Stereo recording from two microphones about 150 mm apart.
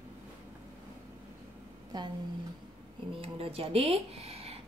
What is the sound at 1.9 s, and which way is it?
Speech, 30° right (ahead or behind).